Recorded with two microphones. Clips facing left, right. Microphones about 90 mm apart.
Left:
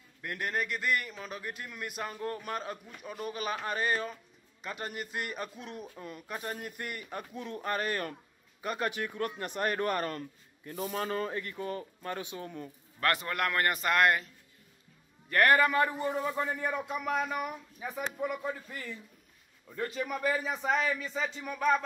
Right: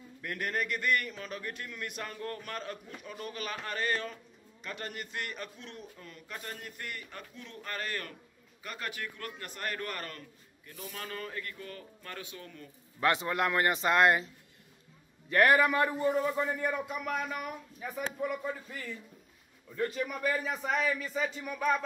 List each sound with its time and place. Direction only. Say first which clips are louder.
0.2 s a man's voice: even; 5° left (ahead or behind); by 10.7 s 30° left (ahead or behind)
10.7 s a man's voice: left 8 dB; 40° left (ahead or behind); by 12.6 s 25° left (ahead or behind)
13.0 s speech: right 2 dB; 20° right (ahead or behind)
15.2 s a man's voice: even; 5° right (ahead or behind)